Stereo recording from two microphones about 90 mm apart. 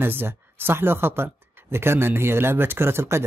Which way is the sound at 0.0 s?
25° right (ahead or behind).